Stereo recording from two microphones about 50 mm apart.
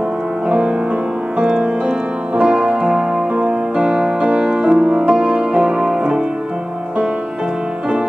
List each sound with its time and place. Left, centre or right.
0.5 s music: right